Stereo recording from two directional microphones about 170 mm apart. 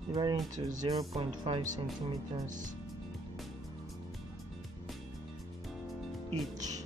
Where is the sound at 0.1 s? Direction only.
25° right (ahead or behind).